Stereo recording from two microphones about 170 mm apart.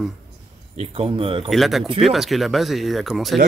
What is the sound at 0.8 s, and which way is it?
Speech, 35° right (ahead or behind).